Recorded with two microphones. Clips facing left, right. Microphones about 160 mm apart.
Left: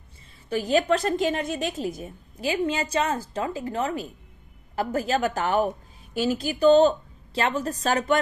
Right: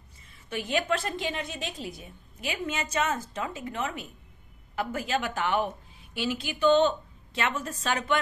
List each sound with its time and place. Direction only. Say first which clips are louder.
0.5 s a woman's voice: left 7 dB; 35° left (ahead or behind)